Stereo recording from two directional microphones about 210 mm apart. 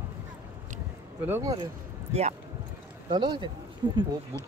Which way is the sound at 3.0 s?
20° right (ahead or behind).